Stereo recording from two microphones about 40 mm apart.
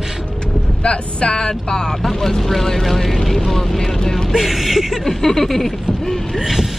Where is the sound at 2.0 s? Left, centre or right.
Centre.